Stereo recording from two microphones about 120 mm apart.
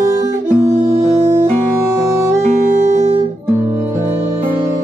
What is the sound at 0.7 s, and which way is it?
Music, 75° right (ahead or behind).